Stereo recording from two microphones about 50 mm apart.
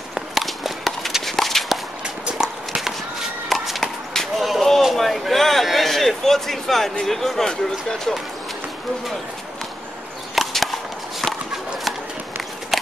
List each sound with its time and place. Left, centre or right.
0.1 s walk: centre
2.2 s clip-clop: centre
2.8 s a sound: centre
7.1 s speech: centre
10.3 s chop: centre